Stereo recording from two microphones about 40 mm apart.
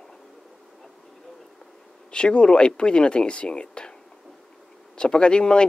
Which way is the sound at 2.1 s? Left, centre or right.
Left.